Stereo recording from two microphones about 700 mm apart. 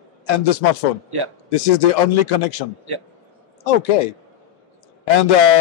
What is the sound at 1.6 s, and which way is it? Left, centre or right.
Speech, left.